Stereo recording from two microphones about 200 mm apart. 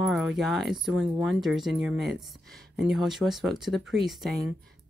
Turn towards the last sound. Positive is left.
turn(degrees=0)  # may be behind; listen again after turning